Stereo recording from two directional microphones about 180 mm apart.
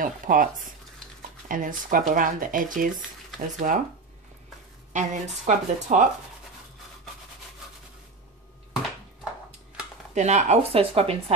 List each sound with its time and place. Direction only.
0.0 s speech: 50° right (ahead or behind)
1.5 s speech: 50° right (ahead or behind)
4.9 s speech: 40° right (ahead or behind)
10.1 s speech: 40° right (ahead or behind)